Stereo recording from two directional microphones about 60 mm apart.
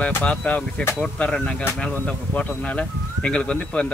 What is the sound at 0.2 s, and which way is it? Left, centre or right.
Speech, centre.